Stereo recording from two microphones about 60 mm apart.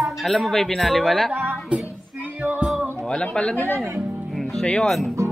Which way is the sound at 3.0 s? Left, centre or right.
Centre.